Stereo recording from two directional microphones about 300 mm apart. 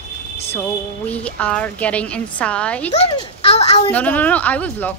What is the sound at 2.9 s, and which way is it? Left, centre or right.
A child's voice, centre.